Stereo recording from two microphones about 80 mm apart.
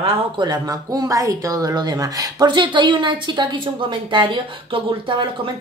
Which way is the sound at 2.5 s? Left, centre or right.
Right.